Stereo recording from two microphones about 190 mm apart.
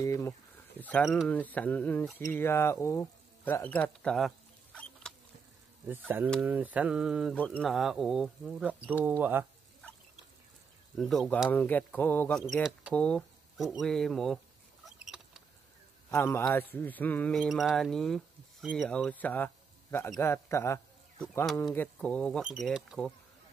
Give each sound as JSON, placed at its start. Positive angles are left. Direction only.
{"t": 0.0, "sound": "a sound", "side_deg": 15}
{"t": 0.7, "sound": "speech", "side_deg": 10}
{"t": 5.1, "sound": "insect", "side_deg": 5}
{"t": 5.9, "sound": "speech", "side_deg": -10}
{"t": 11.0, "sound": "speech", "side_deg": 0}
{"t": 11.5, "sound": "speech", "side_deg": 10}
{"t": 14.9, "sound": "a sound", "side_deg": -5}
{"t": 16.1, "sound": "speech", "side_deg": 15}
{"t": 22.4, "sound": "speech", "side_deg": -5}